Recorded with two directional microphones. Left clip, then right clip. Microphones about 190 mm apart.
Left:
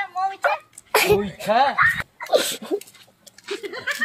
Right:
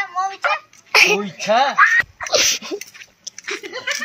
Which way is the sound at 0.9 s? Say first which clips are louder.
Right 4 dB; 45° left (ahead or behind).